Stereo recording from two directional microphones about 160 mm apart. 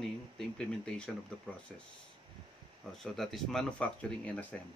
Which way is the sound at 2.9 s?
Centre (ahead or behind).